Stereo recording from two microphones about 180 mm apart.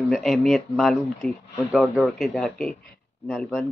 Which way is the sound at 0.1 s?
Centre (ahead or behind).